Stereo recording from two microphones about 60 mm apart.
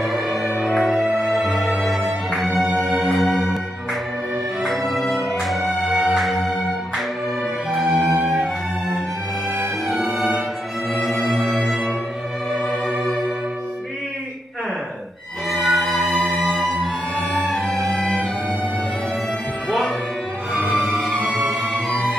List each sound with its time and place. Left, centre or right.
0.0 s music: centre
1.2 s music: centre
2.6 s music: centre
3.1 s music: centre
4.6 s music: centre
6.1 s music: centre
7.8 s music: centre
10.0 s music: right
11.3 s music: centre
15.5 s music: centre
20.9 s music: centre